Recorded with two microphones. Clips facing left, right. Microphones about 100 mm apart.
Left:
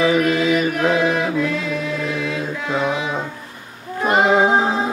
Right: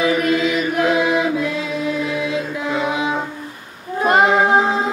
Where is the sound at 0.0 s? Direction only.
25° left (ahead or behind).